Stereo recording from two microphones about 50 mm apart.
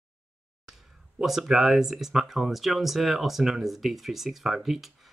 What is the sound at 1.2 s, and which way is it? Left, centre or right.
Speech, centre.